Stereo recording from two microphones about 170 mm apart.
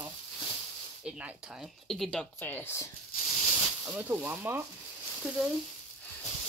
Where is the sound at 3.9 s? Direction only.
10° right (ahead or behind).